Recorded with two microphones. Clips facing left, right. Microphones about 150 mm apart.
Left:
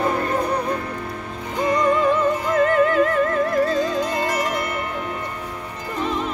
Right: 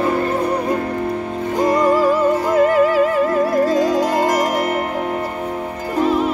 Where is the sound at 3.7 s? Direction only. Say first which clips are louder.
Right 6 dB; 45° right (ahead or behind).